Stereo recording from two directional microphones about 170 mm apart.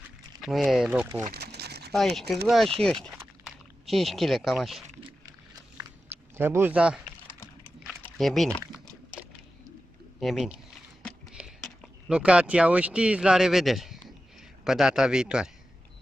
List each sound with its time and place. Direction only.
0.4 s speech: centre (ahead or behind)
1.3 s crumpling: 70° right (ahead or behind)
1.9 s speech: centre (ahead or behind)
5.8 s biting: 15° right (ahead or behind)
8.0 s a sound: centre (ahead or behind)
10.2 s speech: centre (ahead or behind)
12.1 s speech: 5° right (ahead or behind)